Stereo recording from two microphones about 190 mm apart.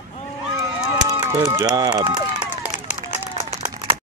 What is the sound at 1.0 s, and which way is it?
Run, 20° right (ahead or behind).